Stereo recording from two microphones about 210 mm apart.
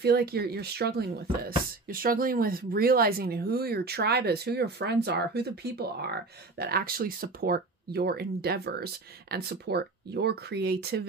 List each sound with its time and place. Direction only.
0.0 s speech: 50° right (ahead or behind)